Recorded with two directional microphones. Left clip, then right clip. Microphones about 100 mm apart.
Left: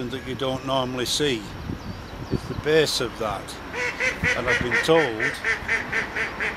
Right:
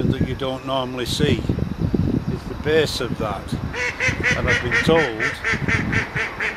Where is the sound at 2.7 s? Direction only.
10° left (ahead or behind).